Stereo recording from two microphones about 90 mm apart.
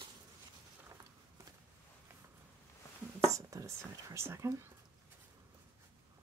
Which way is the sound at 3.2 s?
35° right (ahead or behind).